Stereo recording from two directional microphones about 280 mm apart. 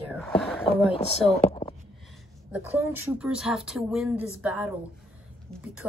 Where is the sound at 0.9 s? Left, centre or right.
Left.